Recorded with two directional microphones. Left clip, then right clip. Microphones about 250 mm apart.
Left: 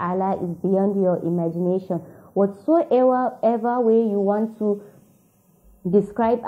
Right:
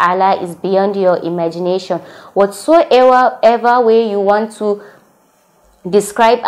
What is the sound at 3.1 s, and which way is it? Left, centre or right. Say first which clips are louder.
Speech: right 11 dB; right.